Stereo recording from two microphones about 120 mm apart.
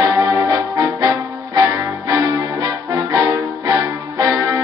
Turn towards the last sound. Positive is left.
turn(degrees=-35)  # may be behind; listen again after turning